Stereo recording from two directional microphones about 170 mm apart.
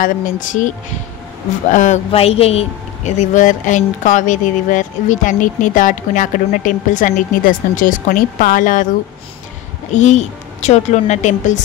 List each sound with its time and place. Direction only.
0.0 s speech: 50° left (ahead or behind)
1.7 s speech: 45° left (ahead or behind)
9.9 s speech: 45° left (ahead or behind)